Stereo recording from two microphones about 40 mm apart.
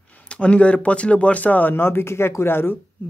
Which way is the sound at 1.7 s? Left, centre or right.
Left.